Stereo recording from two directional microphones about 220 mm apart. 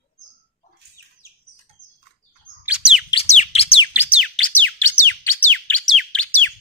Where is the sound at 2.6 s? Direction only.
5° right (ahead or behind).